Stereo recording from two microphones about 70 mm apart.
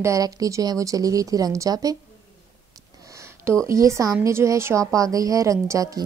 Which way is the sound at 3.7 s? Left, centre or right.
Right.